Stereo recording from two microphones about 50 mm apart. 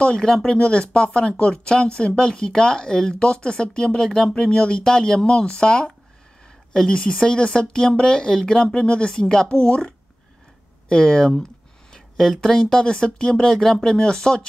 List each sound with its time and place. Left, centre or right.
0.0 s speech: centre